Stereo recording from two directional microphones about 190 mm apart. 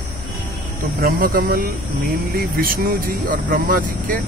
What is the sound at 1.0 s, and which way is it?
Speech, 50° right (ahead or behind).